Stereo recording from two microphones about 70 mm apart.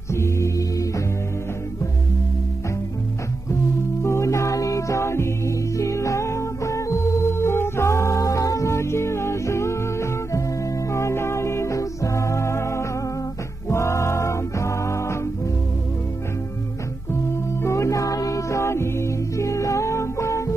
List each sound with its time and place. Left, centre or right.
0.1 s organ: left
4.0 s music: left
8.2 s music: left
17.6 s music: left